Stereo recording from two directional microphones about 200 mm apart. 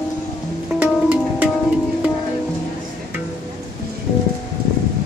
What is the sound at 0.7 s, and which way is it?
Music, 5° right (ahead or behind).